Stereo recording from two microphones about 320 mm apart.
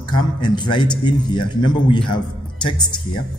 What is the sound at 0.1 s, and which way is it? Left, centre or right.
A man's voice, centre.